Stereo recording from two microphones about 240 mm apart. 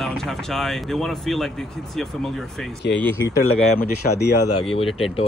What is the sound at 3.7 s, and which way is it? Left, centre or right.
Speech, left.